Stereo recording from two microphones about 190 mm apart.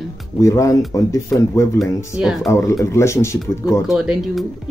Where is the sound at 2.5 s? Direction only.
15° left (ahead or behind).